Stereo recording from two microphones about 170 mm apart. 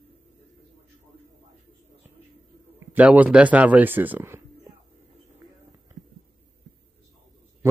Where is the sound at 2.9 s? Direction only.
10° right (ahead or behind).